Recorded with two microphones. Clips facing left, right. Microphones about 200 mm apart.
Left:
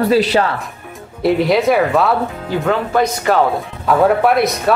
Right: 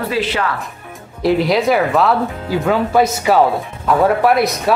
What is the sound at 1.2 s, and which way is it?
Speech, centre (ahead or behind).